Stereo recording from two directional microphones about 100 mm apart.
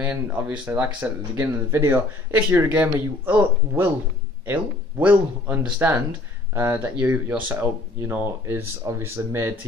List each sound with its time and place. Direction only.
0.0 s speech: 15° right (ahead or behind)